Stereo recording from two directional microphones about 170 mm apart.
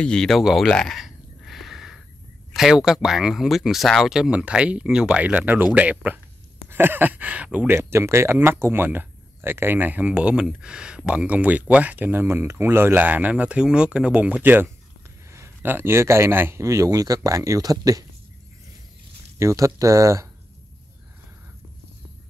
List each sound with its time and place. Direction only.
0.0 s speech: 5° left (ahead or behind)
0.7 s a sound: 5° left (ahead or behind)
2.5 s speech: 5° right (ahead or behind); by 18.0 s 20° right (ahead or behind)
19.3 s speech: 15° right (ahead or behind)